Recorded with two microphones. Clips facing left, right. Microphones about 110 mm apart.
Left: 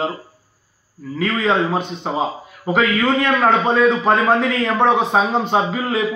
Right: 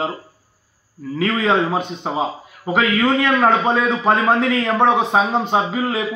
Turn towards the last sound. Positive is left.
turn(degrees=-15)  # may be behind; listen again after turning